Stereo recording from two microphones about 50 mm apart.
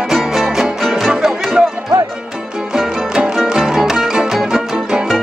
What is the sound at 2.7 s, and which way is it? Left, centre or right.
Music, centre.